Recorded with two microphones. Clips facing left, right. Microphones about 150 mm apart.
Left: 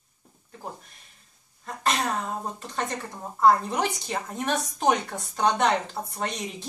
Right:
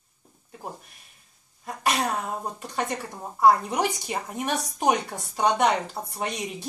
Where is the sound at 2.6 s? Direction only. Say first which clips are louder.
Right 2 dB; 15° right (ahead or behind).